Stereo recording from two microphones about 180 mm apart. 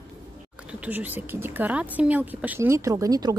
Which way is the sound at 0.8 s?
10° right (ahead or behind).